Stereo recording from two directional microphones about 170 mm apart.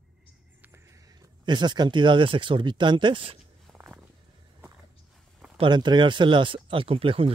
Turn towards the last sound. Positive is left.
turn(degrees=-35)  # may be behind; listen again after turning